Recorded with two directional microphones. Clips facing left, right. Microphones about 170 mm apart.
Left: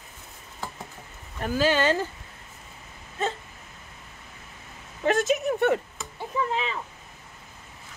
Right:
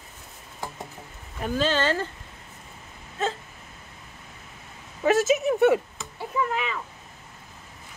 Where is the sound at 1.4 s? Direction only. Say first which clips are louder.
Left 1 dB; 5° left (ahead or behind).